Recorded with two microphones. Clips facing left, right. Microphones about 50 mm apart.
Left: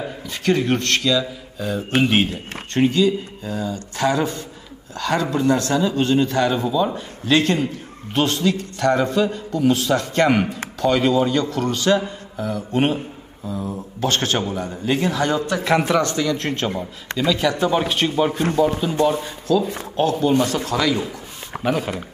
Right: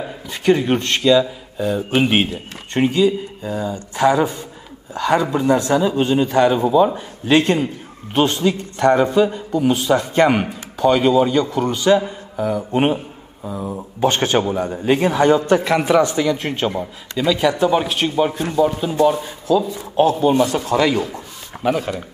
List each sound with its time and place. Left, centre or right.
0.3 s speech: centre; by 15.6 s right
15.6 s speech: centre
16.0 s speech: centre
17.7 s speech: centre
19.6 s speech: left
20.2 s speech: centre
21.6 s speech: centre